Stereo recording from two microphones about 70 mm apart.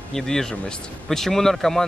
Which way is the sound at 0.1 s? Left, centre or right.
Centre.